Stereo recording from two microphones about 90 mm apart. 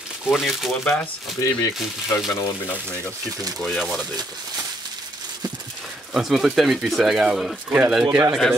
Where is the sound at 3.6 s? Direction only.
5° left (ahead or behind).